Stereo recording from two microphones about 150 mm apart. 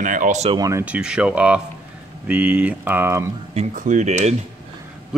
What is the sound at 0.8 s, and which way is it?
Speech, 5° right (ahead or behind).